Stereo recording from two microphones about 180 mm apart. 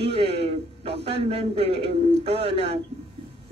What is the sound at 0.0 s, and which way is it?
A man's voice, 30° right (ahead or behind).